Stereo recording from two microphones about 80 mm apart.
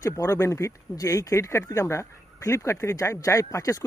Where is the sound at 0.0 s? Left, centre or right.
Left.